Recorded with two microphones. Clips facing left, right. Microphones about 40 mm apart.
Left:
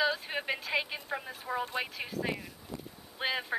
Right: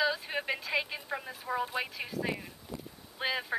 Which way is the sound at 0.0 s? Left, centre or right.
Centre.